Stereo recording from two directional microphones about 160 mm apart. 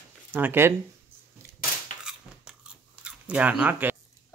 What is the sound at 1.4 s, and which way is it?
Crushing, 20° right (ahead or behind).